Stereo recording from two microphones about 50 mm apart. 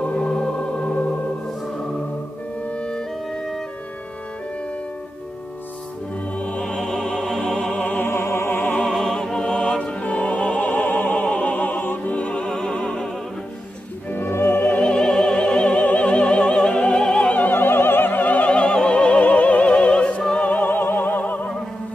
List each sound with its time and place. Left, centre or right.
0.0 s music: left
2.6 s music: left
6.3 s music: left
6.6 s music: centre
8.0 s music: left
8.5 s music: left
8.9 s music: centre; by 10.7 s left
10.7 s opera: left
12.1 s music: left
14.1 s music: left
14.8 s opera: centre
17.4 s opera: left
18.6 s opera: centre
20.3 s music: left